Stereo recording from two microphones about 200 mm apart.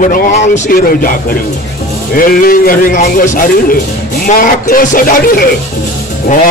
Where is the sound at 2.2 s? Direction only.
45° left (ahead or behind).